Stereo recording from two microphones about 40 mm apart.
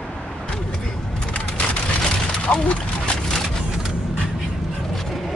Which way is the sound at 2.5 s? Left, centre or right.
Left.